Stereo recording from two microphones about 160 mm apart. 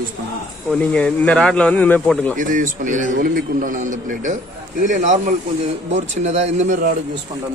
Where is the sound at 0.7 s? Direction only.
5° left (ahead or behind).